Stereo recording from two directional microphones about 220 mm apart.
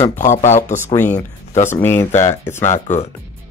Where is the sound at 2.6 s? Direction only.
35° left (ahead or behind).